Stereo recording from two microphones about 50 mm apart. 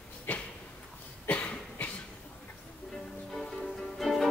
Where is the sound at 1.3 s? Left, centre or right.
Left.